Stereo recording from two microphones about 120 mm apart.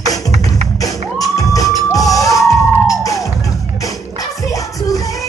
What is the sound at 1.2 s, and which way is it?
Music, 30° left (ahead or behind).